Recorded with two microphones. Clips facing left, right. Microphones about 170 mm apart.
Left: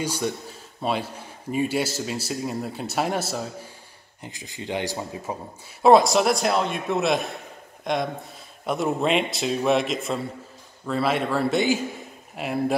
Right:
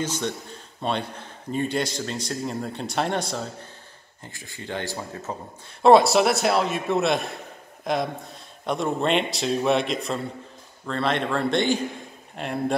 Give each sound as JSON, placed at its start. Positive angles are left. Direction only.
{"t": 0.0, "sound": "a man's voice", "side_deg": 10}
{"t": 4.2, "sound": "a man's voice", "side_deg": 15}
{"t": 5.9, "sound": "a man's voice", "side_deg": 0}